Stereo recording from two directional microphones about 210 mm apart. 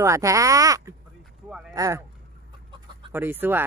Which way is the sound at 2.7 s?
25° right (ahead or behind).